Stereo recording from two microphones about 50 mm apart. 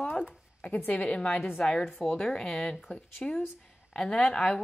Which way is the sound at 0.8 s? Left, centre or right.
Left.